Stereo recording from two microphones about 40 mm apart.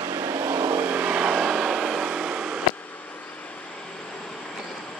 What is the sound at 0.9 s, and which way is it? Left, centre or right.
Vehicle, right.